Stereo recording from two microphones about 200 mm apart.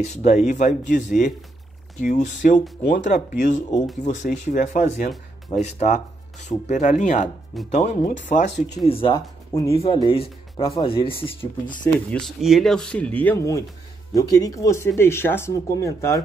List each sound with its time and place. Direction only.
0.0 s speech: 35° left (ahead or behind)
8.8 s speech: 25° left (ahead or behind)
9.5 s speech: 15° left (ahead or behind)
9.8 s speech: 25° left (ahead or behind)
12.1 s speech: centre (ahead or behind)